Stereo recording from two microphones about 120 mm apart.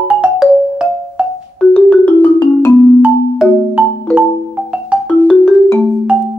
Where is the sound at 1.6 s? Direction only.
5° left (ahead or behind).